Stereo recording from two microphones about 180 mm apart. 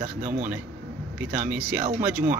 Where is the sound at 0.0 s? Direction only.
45° right (ahead or behind).